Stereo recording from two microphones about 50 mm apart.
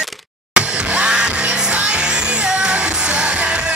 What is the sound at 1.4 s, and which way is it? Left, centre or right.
Music, right.